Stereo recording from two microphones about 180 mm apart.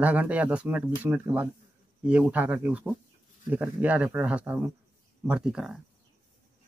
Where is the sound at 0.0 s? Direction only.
10° right (ahead or behind).